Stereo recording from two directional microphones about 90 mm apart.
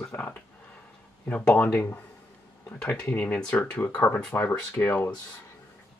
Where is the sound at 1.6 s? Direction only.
20° left (ahead or behind).